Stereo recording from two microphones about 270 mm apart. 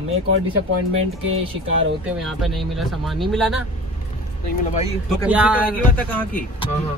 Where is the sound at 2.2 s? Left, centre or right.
Centre.